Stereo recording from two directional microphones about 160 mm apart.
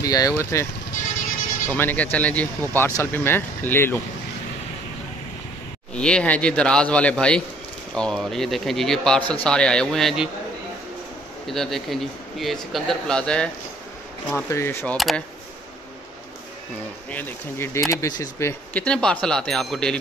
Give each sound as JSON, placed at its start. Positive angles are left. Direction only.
{"t": 0.0, "sound": "speech", "side_deg": 20}
{"t": 1.7, "sound": "speech", "side_deg": 10}
{"t": 5.9, "sound": "speech", "side_deg": 5}
{"t": 11.4, "sound": "speech", "side_deg": 0}
{"t": 15.0, "sound": "speech", "side_deg": 0}
{"t": 17.1, "sound": "speech", "side_deg": 15}
{"t": 18.7, "sound": "speech", "side_deg": 10}